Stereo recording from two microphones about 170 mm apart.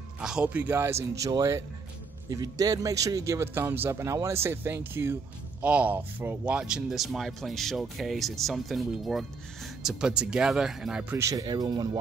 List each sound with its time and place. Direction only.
0.2 s speech: 5° right (ahead or behind); by 12.0 s 25° right (ahead or behind)